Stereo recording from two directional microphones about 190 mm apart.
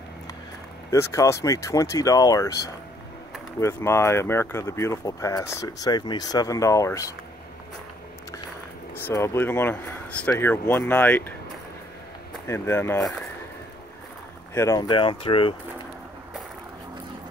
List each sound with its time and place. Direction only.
0.8 s speech: 15° left (ahead or behind)
9.0 s speech: 15° left (ahead or behind)
12.4 s speech: 10° left (ahead or behind)
14.5 s speech: 15° left (ahead or behind)